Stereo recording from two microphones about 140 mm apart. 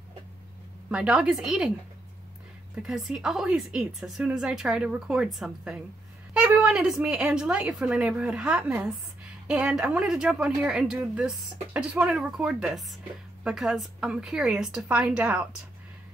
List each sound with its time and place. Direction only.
0.8 s speech: 5° right (ahead or behind)
2.7 s a woman's voice: 5° right (ahead or behind)